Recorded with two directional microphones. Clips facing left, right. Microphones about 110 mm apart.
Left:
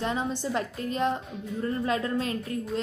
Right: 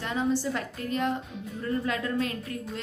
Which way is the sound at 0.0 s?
25° left (ahead or behind).